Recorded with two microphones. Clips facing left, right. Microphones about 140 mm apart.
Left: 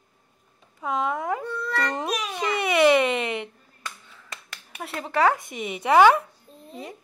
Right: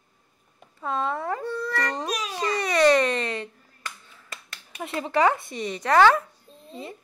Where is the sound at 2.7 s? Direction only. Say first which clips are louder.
Left 1 dB; 10° left (ahead or behind).